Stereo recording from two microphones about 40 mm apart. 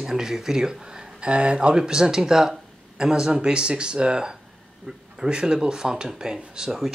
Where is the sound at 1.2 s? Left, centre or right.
Right.